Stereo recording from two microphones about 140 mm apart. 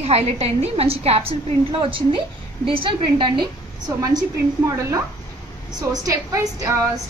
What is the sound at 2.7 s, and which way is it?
Speech, 35° right (ahead or behind).